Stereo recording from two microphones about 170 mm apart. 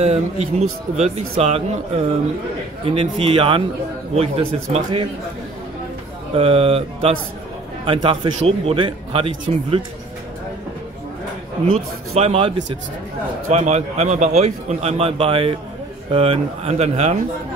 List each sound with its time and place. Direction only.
0.0 s a man's voice: 40° right (ahead or behind)
2.8 s a man's voice: 35° right (ahead or behind)
6.3 s a man's voice: 35° right (ahead or behind)
12.1 s a man's voice: 40° right (ahead or behind)